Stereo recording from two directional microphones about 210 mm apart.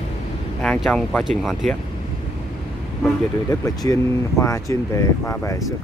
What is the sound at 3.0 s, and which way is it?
Speech, 15° left (ahead or behind).